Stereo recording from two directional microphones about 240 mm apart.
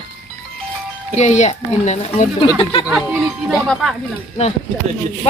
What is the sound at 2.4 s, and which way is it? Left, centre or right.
Speech, centre.